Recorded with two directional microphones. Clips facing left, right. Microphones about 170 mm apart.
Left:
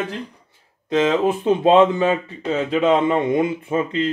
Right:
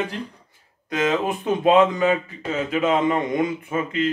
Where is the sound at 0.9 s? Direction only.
30° left (ahead or behind).